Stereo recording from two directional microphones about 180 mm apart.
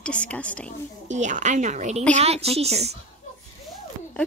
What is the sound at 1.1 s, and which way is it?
Speech, 40° right (ahead or behind).